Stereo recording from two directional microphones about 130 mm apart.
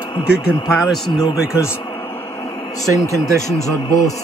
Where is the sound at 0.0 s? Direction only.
35° left (ahead or behind).